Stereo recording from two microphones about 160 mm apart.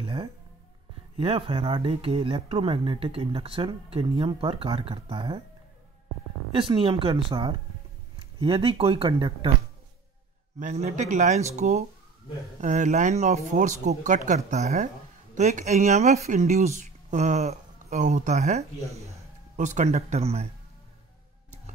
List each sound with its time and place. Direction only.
0.0 s music: 30° right (ahead or behind)
1.1 s speech: 35° right (ahead or behind)
6.5 s speech: 35° right (ahead or behind)
10.6 s speech: 45° right (ahead or behind)